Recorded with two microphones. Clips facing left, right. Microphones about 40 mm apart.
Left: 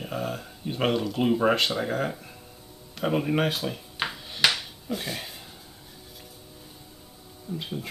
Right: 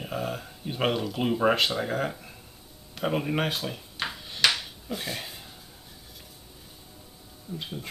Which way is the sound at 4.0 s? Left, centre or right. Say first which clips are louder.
Left 1 dB; centre.